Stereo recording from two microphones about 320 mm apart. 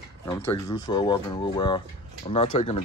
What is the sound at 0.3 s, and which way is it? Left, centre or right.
Speech, centre.